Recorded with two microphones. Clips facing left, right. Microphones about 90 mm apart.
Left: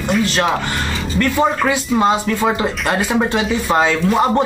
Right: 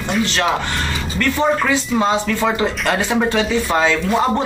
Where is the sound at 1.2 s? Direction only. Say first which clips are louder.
Left 1 dB; 10° left (ahead or behind).